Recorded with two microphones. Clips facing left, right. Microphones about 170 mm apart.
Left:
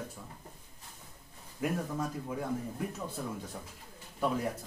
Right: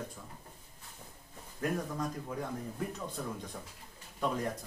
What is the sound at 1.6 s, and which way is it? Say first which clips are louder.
A man's voice: left 1 dB; 5° left (ahead or behind).